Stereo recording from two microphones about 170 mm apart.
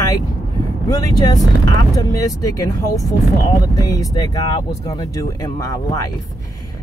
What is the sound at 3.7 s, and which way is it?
Speech, 20° left (ahead or behind).